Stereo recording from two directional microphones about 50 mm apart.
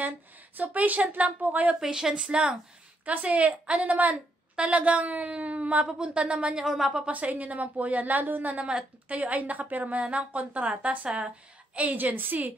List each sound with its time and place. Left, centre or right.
0.6 s a woman's voice: right
1.8 s a woman's voice: centre
3.1 s a woman's voice: right
6.6 s a woman's voice: centre
7.1 s a woman's voice: right
8.6 s a woman's voice: right